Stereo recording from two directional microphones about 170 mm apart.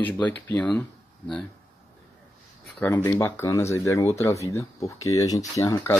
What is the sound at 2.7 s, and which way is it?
Speech, 15° left (ahead or behind).